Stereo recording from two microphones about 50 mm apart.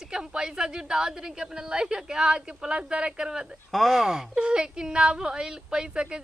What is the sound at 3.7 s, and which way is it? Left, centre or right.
Speech, centre.